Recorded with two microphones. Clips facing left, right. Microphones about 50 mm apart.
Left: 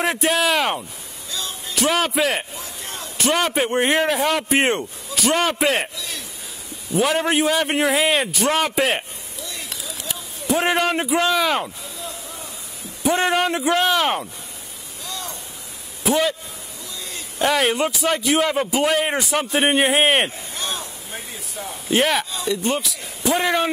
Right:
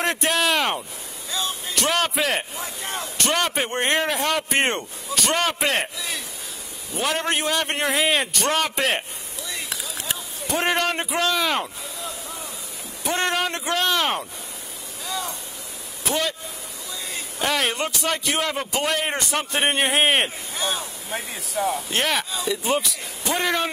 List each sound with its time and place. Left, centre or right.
0.0 s a man's voice: centre
2.5 s a sound: right
3.2 s a man's voice: centre
6.9 s a man's voice: centre
9.5 s a sound: centre
10.4 s a man's voice: centre
15.0 s a sound: centre
16.0 s a man's voice: centre
21.9 s a man's voice: centre